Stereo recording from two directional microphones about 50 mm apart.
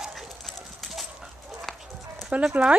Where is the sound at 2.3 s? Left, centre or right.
Right.